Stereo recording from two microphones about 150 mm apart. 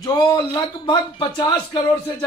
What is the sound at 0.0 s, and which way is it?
A man's voice, 25° left (ahead or behind).